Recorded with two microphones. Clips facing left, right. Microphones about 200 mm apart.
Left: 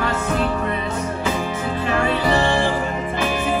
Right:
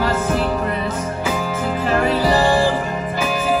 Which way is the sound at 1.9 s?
40° right (ahead or behind).